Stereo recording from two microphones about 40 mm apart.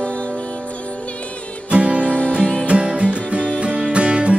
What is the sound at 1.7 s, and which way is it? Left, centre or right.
Music, right.